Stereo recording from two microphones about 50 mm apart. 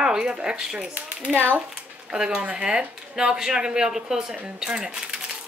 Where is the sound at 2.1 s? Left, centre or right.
Centre.